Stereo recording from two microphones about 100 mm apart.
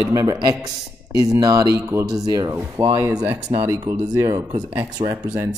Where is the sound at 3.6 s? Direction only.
25° right (ahead or behind).